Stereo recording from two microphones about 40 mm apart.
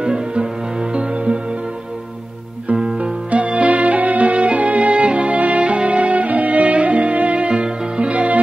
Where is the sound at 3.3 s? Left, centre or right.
Right.